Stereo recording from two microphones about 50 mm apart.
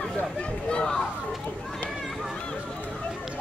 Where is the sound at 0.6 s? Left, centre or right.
Centre.